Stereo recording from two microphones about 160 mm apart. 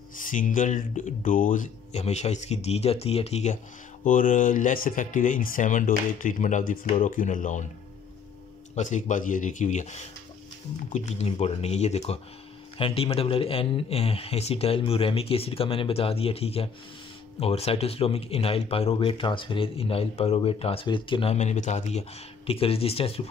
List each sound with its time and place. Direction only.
0.1 s speech: 55° left (ahead or behind)
4.0 s speech: 55° left (ahead or behind)
8.7 s speech: 50° left (ahead or behind)